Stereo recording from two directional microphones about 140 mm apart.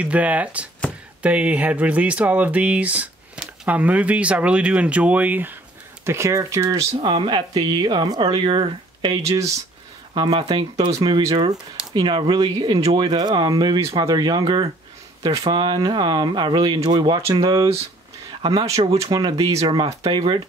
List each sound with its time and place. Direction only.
0.0 s speech: 10° right (ahead or behind)
7.1 s speech: 35° right (ahead or behind)